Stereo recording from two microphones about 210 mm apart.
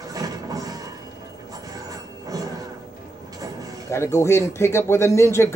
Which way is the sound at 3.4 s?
15° right (ahead or behind).